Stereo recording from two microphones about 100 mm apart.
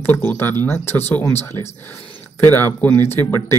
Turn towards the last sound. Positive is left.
turn(degrees=25)  # may be behind; listen again after turning